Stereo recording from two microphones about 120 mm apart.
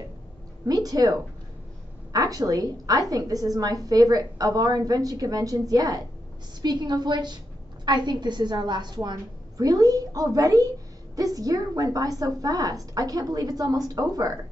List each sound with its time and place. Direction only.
0.7 s a woman's voice: 30° right (ahead or behind)